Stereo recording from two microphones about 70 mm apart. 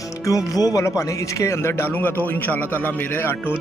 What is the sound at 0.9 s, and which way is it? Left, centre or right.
A man's voice, left.